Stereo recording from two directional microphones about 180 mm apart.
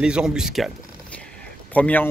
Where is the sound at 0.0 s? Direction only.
5° right (ahead or behind).